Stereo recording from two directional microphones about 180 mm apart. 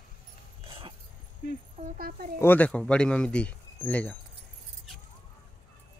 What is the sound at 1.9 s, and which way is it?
Speech, 55° right (ahead or behind).